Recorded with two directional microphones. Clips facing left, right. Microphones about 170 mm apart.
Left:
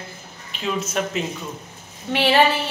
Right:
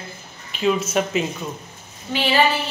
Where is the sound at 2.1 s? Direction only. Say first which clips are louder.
Left 3 dB; 70° left (ahead or behind).